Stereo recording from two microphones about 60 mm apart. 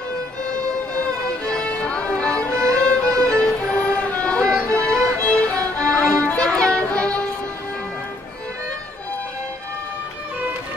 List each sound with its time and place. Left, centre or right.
0.5 s music: centre